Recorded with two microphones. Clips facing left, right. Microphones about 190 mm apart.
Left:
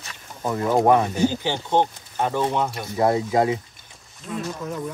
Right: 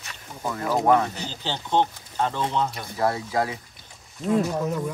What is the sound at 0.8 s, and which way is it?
Speech, 15° left (ahead or behind).